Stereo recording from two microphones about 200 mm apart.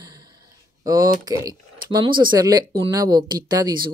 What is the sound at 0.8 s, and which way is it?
Speech, 20° right (ahead or behind).